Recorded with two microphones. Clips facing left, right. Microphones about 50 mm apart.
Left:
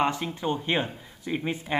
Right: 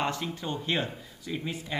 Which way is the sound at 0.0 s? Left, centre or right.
Left.